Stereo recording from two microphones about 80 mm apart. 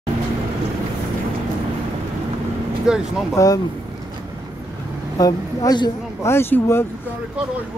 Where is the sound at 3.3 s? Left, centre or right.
Left.